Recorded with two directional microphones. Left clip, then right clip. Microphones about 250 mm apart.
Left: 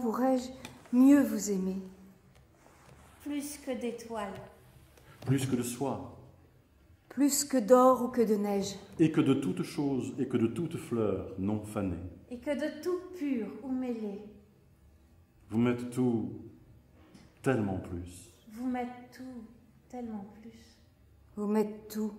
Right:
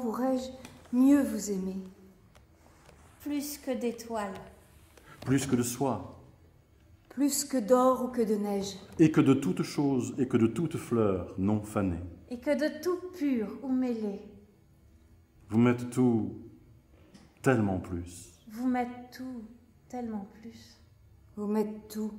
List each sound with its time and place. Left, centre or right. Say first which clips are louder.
0.1 s a woman's voice: left 2 dB; centre
3.2 s a woman's voice: right 3 dB; right
4.9 s a sound: right 3 dB; right
5.5 s a woman's voice: right 4 dB; right
7.1 s a woman's voice: left 1 dB; centre
8.9 s a woman's voice: right 3 dB; right
15.4 s a woman's voice: right 4 dB; right
17.4 s a woman's voice: right 4 dB; right
21.4 s a woman's voice: left 1 dB; centre